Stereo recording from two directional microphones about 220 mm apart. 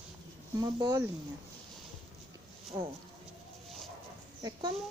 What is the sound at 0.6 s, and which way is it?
Speech, 20° right (ahead or behind).